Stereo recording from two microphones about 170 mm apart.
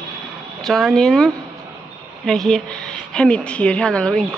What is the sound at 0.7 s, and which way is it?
A woman's voice, centre (ahead or behind).